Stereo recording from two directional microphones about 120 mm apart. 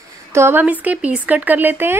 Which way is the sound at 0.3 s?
20° right (ahead or behind).